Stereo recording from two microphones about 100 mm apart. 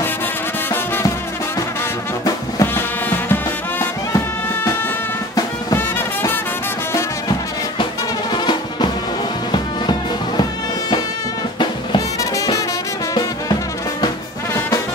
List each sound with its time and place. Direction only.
2.6 s music: 20° left (ahead or behind)
5.8 s music: 20° left (ahead or behind)
8.3 s music: 50° left (ahead or behind)
12.2 s music: 35° left (ahead or behind)